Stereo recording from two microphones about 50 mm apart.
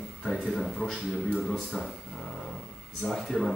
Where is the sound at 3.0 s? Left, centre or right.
Centre.